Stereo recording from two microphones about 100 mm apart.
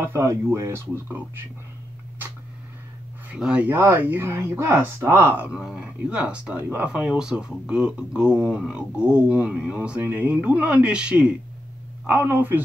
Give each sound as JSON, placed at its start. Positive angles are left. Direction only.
{"t": 0.0, "sound": "speech", "side_deg": -25}
{"t": 3.3, "sound": "speech", "side_deg": -10}
{"t": 3.7, "sound": "speech", "side_deg": -20}
{"t": 5.5, "sound": "speech", "side_deg": -5}